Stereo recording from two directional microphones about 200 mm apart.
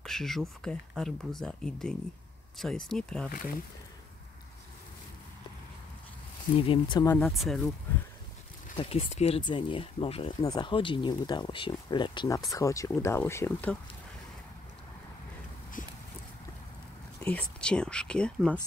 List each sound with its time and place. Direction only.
0.0 s a sound: centre (ahead or behind)
0.7 s speech: centre (ahead or behind)
3.3 s speech: 45° left (ahead or behind)
6.6 s speech: 25° left (ahead or behind)
7.1 s speech: 5° left (ahead or behind)
8.7 s speech: 30° left (ahead or behind); by 13.7 s 10° left (ahead or behind)
15.8 s a sound: 40° left (ahead or behind)
17.2 s speech: 5° left (ahead or behind)